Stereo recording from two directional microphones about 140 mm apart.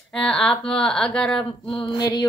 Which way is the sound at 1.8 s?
30° left (ahead or behind).